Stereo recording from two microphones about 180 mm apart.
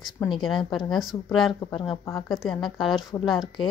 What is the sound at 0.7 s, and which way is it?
Speech, 25° left (ahead or behind).